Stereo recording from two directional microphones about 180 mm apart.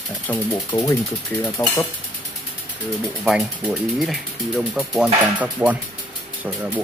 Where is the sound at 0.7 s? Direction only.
25° left (ahead or behind).